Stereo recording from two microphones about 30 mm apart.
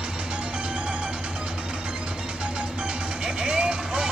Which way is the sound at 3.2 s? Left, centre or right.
Right.